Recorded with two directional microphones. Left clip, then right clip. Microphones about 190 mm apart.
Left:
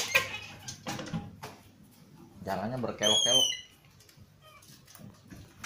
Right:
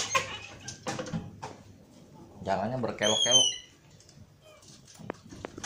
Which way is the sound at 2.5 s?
5° right (ahead or behind).